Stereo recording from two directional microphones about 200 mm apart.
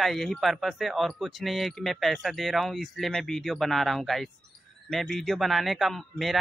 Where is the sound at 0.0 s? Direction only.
Centre (ahead or behind).